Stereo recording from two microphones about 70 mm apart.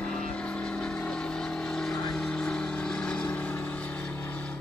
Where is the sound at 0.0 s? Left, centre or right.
Centre.